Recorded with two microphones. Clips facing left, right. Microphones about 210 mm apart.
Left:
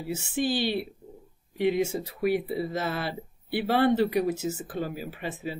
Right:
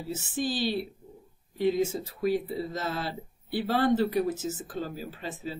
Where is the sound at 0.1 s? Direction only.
65° left (ahead or behind).